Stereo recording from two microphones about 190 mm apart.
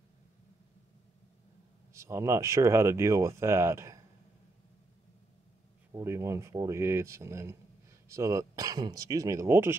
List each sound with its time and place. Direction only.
2.0 s speech: 15° right (ahead or behind)
5.9 s speech: 15° right (ahead or behind)